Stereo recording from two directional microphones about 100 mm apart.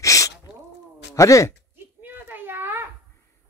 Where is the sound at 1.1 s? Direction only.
30° left (ahead or behind).